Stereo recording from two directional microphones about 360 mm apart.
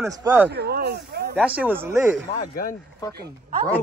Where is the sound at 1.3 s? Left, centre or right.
Centre.